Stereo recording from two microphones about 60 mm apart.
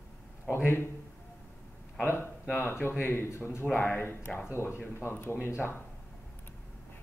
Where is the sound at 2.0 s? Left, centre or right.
Left.